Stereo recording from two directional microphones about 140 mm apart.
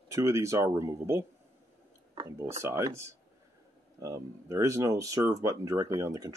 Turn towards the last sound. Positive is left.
turn(degrees=-20)  # may be behind; listen again after turning